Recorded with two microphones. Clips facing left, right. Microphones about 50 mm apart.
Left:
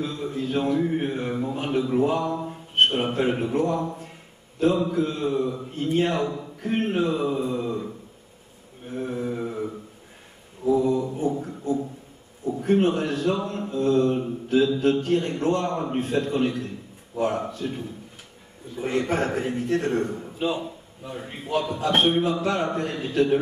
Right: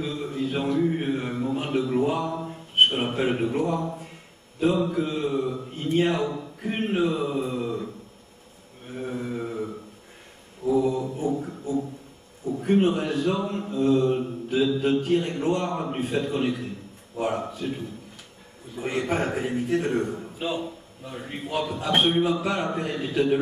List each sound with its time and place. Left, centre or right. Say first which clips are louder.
0.0 s mantra: even; centre
4.6 s a man's voice: left 1 dB; centre
8.8 s mantra: left 3 dB; centre
10.9 s music: left 2 dB; centre
12.4 s a man's voice: left 1 dB; centre